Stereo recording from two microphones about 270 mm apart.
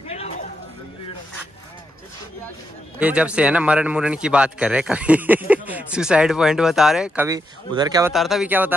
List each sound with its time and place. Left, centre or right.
0.1 s a sound: left
3.0 s a man's voice: centre
8.1 s a man's voice: centre